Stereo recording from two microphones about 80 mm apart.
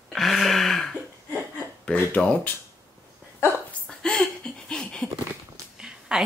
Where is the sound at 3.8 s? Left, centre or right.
Centre.